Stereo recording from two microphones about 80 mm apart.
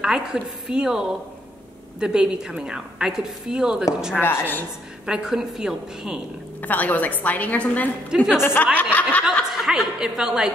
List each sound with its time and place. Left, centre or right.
0.0 s a woman's voice: centre
4.2 s a woman's voice: left
5.0 s a woman's voice: centre
6.6 s a woman's voice: left
8.1 s a woman's voice: centre
8.7 s a woman's voice: centre
9.2 s a woman's voice: centre